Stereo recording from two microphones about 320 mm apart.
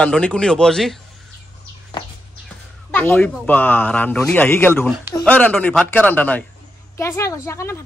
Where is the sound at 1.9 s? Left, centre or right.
Centre.